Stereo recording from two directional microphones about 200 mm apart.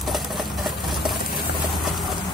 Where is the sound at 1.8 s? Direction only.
Centre (ahead or behind).